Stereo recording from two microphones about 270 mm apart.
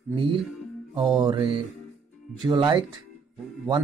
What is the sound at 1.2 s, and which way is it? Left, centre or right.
Speech, centre.